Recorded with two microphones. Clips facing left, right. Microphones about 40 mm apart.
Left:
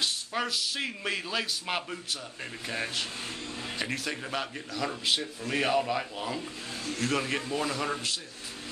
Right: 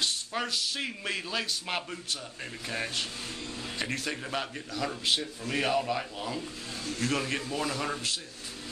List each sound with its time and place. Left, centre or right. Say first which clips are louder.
0.0 s a man's voice: left 1 dB; centre